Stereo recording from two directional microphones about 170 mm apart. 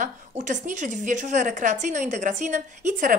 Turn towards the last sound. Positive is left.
turn(degrees=-45)  # may be behind; listen again after turning